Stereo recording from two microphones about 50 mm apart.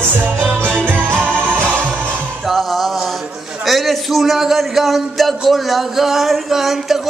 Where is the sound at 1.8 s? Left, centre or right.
Right.